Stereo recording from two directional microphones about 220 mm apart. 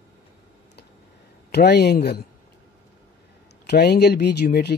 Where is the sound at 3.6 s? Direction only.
45° left (ahead or behind).